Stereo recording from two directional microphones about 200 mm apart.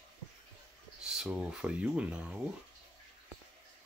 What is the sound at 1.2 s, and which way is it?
Speech, 5° right (ahead or behind).